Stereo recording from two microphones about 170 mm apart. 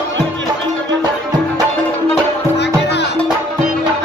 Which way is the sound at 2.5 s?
85° left.